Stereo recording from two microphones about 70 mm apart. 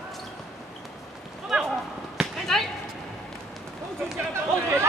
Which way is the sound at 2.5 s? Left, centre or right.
Centre.